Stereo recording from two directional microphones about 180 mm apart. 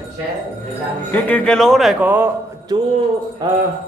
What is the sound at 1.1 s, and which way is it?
Speech, 10° left (ahead or behind).